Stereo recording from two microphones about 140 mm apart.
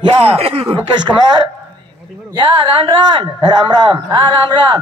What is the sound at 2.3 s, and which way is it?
A man's voice, 30° right (ahead or behind).